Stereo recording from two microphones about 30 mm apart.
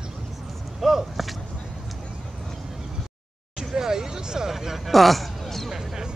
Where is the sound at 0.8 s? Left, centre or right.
Centre.